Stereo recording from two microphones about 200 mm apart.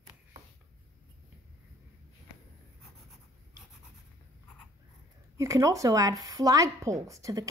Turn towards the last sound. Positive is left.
turn(degrees=-15)  # may be behind; listen again after turning